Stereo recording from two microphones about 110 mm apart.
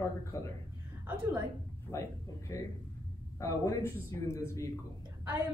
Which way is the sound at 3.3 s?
30° left (ahead or behind).